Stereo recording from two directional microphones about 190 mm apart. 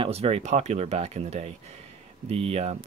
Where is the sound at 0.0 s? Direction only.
30° right (ahead or behind).